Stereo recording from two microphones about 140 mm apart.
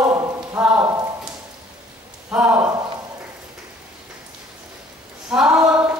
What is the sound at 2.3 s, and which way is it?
Speech, 10° right (ahead or behind).